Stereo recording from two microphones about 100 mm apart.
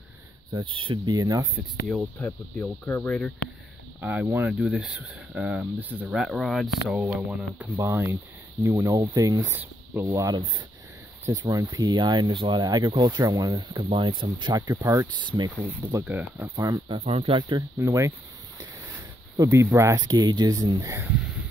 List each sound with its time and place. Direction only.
0.7 s speech: 60° right (ahead or behind)
1.1 s speech: 40° right (ahead or behind)
1.9 s speech: 15° left (ahead or behind)
4.0 s speech: 20° right (ahead or behind)
6.3 s speech: centre (ahead or behind)
7.8 s speech: 25° right (ahead or behind)
11.3 s speech: 45° right (ahead or behind)
16.0 s speech: 20° right (ahead or behind)
16.8 s speech: 65° right (ahead or behind)
17.3 s speech: 50° right (ahead or behind)
17.7 s speech: 30° right (ahead or behind)
19.3 s speech: 35° right (ahead or behind)
20.0 s speech: 45° right (ahead or behind)